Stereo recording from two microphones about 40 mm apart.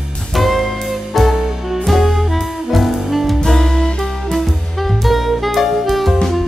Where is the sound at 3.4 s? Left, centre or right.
Centre.